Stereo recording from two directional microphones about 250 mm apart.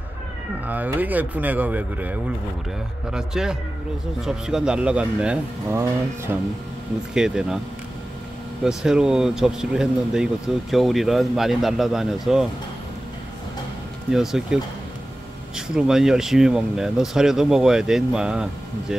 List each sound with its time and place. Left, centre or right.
0.7 s speech: centre
8.6 s speech: centre
14.1 s speech: centre